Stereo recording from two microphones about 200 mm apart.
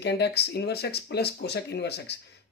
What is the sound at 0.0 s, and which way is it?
Speech, 55° left (ahead or behind).